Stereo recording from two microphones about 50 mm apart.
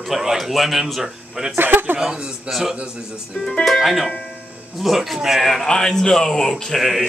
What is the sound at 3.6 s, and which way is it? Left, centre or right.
Speech, centre.